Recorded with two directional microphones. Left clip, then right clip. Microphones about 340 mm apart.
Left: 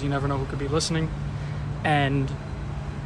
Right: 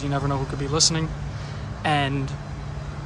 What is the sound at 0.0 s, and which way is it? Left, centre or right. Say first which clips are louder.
Speech: right 1 dB; centre.